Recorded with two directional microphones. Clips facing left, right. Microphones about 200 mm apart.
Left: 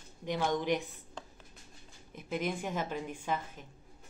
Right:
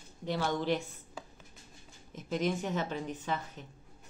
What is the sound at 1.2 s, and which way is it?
Music, 5° right (ahead or behind).